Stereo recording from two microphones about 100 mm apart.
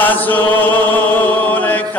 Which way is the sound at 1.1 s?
15° left (ahead or behind).